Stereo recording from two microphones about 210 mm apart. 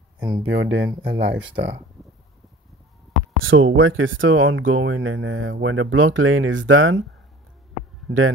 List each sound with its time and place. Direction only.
0.2 s speech: 20° right (ahead or behind)
0.5 s speech: 60° right (ahead or behind)
3.3 s speech: 70° right (ahead or behind)